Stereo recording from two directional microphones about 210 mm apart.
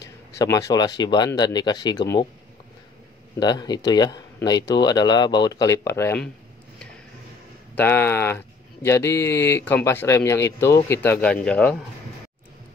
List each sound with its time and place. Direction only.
0.0 s speech: 15° left (ahead or behind)
3.3 s speech: 20° left (ahead or behind)
7.7 s speech: 10° left (ahead or behind)